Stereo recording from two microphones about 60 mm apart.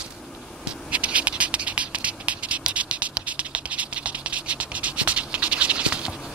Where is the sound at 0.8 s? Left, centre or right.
Right.